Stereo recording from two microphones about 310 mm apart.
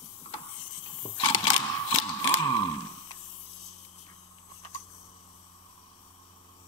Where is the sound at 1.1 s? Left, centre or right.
Centre.